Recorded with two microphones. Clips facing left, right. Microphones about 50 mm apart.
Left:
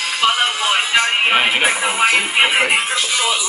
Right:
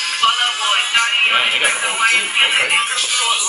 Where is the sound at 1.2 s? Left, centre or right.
Centre.